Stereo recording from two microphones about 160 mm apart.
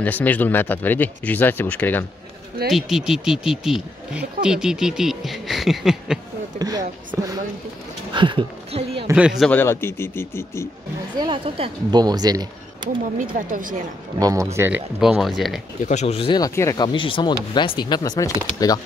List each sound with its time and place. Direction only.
0.0 s speech: 10° left (ahead or behind)
2.7 s speech: centre (ahead or behind)
6.6 s speech: 25° right (ahead or behind)
9.1 s speech: 5° right (ahead or behind)
9.5 s speech: 15° left (ahead or behind)
11.1 s speech: 30° right (ahead or behind)
13.3 s a woman's voice: 60° right (ahead or behind)
14.2 s speech: 20° right (ahead or behind)
15.0 s speech: centre (ahead or behind)
15.9 s speech: 45° left (ahead or behind)
16.3 s speech: 20° left (ahead or behind)